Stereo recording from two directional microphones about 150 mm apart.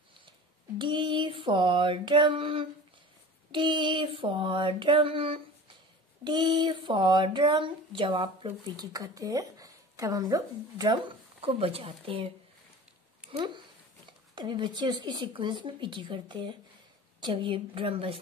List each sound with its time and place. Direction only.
0.7 s speech: 35° right (ahead or behind)
14.3 s speech: 30° right (ahead or behind)